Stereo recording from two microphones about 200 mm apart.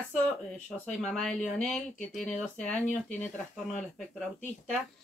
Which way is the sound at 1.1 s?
Centre (ahead or behind).